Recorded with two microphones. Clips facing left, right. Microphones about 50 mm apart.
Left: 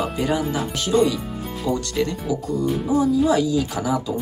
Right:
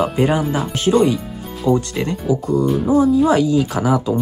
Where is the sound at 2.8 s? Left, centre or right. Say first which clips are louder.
Right 4 dB; right.